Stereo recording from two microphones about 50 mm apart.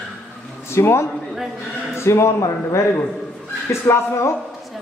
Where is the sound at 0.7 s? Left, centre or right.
Left.